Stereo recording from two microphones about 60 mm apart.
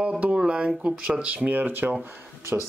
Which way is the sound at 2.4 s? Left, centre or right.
Right.